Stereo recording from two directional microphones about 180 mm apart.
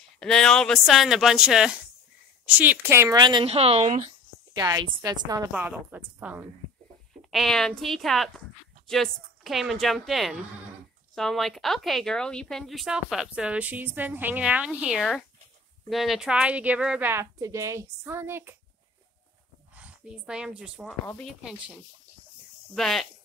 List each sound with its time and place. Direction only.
0.2 s speech: 5° left (ahead or behind); by 4.1 s 40° right (ahead or behind)
4.6 s speech: 20° right (ahead or behind)
5.5 s a woman's voice: 10° right (ahead or behind)
7.2 s a woman's voice: centre (ahead or behind)
19.7 s a woman's voice: 5° right (ahead or behind)
21.0 s speech: 10° left (ahead or behind)
21.3 s speech: centre (ahead or behind)
22.8 s speech: centre (ahead or behind)